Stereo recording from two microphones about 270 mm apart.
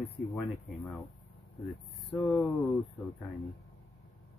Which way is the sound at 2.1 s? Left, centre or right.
Centre.